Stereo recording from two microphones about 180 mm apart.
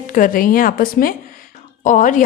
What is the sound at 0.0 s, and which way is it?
A woman's voice, 50° left (ahead or behind).